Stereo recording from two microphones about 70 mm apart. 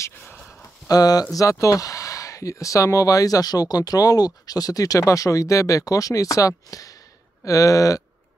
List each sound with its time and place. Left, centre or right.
0.1 s a sound: left
0.8 s speech: left
1.3 s speech: left